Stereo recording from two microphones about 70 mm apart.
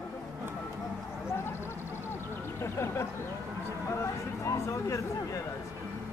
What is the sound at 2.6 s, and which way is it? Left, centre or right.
Speech, left.